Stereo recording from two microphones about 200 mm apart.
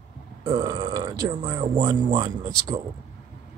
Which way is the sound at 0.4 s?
25° right (ahead or behind).